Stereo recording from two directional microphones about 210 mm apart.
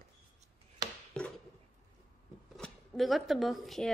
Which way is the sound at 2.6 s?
Centre (ahead or behind).